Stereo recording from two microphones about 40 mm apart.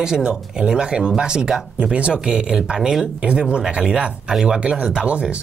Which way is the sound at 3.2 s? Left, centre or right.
Right.